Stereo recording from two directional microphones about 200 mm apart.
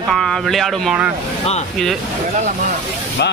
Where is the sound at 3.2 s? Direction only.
55° left (ahead or behind).